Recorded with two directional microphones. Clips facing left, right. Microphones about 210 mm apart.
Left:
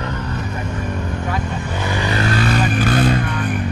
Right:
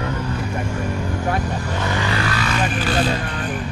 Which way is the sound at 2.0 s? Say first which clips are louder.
Left 3 dB; 20° left (ahead or behind).